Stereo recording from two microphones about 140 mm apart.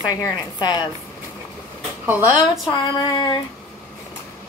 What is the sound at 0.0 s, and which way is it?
Speech, 30° left (ahead or behind).